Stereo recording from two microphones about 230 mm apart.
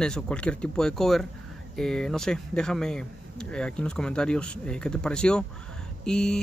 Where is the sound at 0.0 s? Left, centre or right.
Centre.